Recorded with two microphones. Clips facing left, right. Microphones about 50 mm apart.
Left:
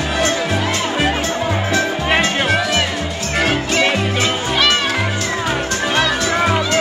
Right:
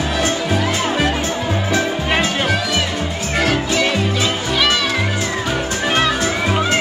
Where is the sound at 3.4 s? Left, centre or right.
Left.